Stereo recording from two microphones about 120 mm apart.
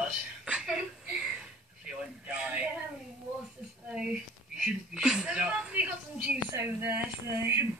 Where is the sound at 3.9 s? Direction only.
10° right (ahead or behind).